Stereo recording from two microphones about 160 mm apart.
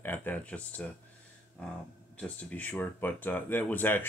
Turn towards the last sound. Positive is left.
turn(degrees=10)  # may be behind; listen again after turning